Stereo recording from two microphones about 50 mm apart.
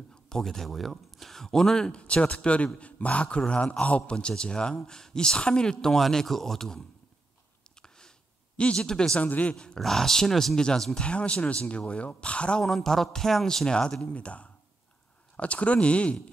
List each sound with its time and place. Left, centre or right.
0.1 s speech: centre
8.5 s speech: centre
9.2 s speech: left
9.8 s speech: centre
12.6 s speech: centre; by 16.2 s left